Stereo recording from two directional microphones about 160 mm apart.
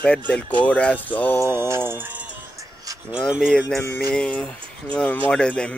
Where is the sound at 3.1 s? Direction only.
Centre (ahead or behind).